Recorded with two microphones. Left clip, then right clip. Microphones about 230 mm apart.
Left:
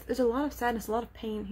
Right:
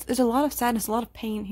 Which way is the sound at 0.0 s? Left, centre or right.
Right.